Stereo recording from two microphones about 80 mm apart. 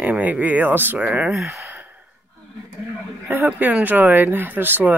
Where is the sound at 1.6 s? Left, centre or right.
Right.